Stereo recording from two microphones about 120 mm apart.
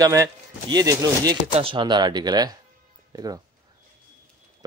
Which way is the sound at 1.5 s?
45° right (ahead or behind).